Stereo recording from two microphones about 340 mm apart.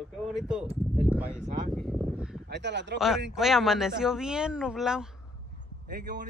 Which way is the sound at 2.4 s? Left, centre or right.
Right.